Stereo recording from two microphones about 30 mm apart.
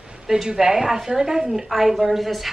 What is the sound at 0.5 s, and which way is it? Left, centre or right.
A woman's voice, centre.